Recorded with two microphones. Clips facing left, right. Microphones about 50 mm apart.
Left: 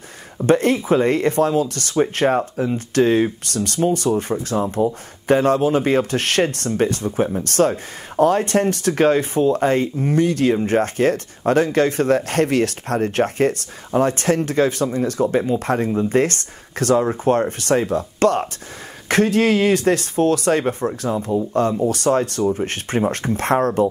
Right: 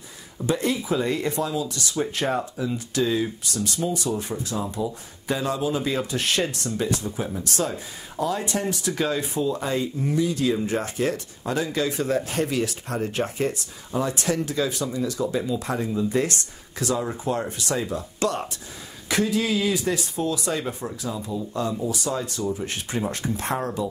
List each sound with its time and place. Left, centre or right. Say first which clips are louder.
0.5 s speech: left 8 dB; left
22.4 s speech: left 7 dB; left